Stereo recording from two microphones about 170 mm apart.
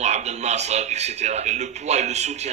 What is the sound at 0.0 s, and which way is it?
Speech, 40° right (ahead or behind).